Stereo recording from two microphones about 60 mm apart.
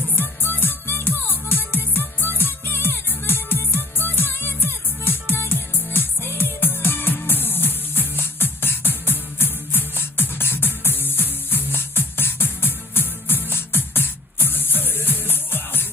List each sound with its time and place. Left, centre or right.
0.1 s music: left